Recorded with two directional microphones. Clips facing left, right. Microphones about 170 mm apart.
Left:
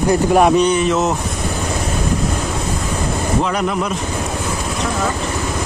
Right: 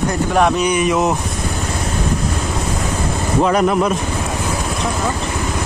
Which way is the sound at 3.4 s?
45° right (ahead or behind).